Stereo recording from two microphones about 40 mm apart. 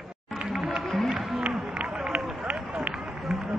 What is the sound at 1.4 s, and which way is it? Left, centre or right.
Run, right.